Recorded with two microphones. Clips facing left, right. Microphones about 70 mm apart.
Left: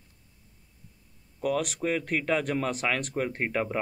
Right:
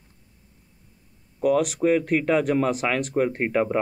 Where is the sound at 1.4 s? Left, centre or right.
Centre.